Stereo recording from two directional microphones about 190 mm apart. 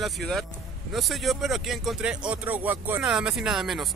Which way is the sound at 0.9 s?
Centre (ahead or behind).